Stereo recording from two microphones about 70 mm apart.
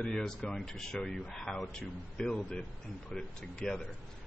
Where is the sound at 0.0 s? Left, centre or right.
Centre.